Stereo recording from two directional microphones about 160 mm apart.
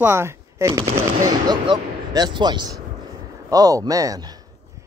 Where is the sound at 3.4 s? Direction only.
20° right (ahead or behind).